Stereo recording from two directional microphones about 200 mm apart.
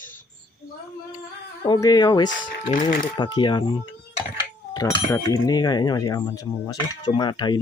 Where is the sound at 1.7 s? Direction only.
20° left (ahead or behind).